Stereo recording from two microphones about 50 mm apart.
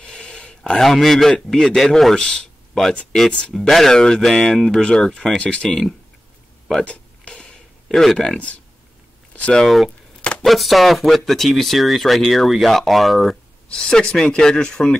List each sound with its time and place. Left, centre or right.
0.0 s a sound: centre
0.7 s a man's voice: centre
6.8 s a sound: left
7.9 s a man's voice: centre
9.5 s a man's voice: centre
13.7 s a man's voice: centre